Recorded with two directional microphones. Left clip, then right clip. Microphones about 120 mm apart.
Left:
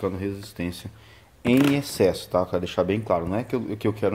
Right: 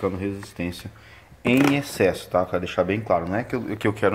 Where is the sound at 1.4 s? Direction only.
45° left (ahead or behind).